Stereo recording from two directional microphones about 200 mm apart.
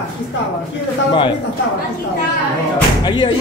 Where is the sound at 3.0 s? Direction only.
25° left (ahead or behind).